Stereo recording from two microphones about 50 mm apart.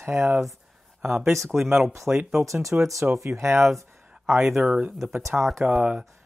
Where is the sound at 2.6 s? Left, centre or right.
Right.